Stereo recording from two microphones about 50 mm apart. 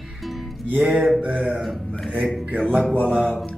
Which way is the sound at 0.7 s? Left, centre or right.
Centre.